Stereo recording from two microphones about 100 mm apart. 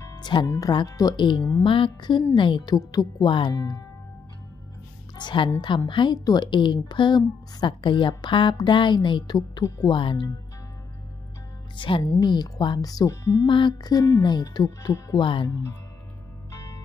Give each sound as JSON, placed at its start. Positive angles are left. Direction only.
{"t": 0.0, "sound": "music", "side_deg": 45}
{"t": 0.5, "sound": "speech", "side_deg": 40}
{"t": 1.1, "sound": "a woman's voice", "side_deg": 50}
{"t": 5.1, "sound": "a woman's voice", "side_deg": 50}
{"t": 6.1, "sound": "a woman's voice", "side_deg": 40}
{"t": 11.7, "sound": "speech", "side_deg": 55}
{"t": 12.0, "sound": "speech", "side_deg": 40}
{"t": 13.5, "sound": "speech", "side_deg": 55}
{"t": 15.1, "sound": "speech", "side_deg": 55}
{"t": 16.5, "sound": "music", "side_deg": 30}